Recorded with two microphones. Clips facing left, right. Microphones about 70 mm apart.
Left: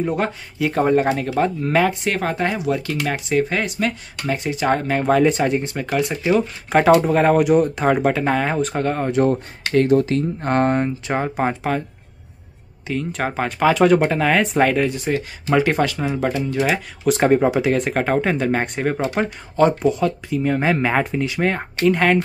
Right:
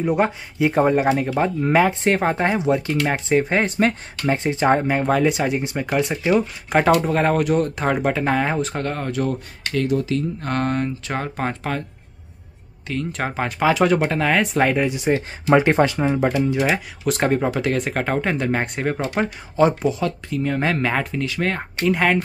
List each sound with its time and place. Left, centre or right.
0.0 s speech: centre
5.0 s speech: centre
5.6 s speech: centre
6.2 s speech: centre
9.1 s speech: left
10.5 s speech: left
11.1 s speech: centre
12.8 s speech: centre; by 16.3 s right
16.4 s speech: centre
21.8 s speech: centre